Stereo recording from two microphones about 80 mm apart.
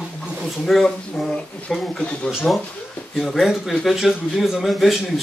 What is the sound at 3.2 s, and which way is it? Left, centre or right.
Speech, centre.